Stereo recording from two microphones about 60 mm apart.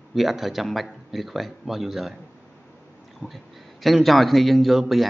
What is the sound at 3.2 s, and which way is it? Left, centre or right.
Speech, left.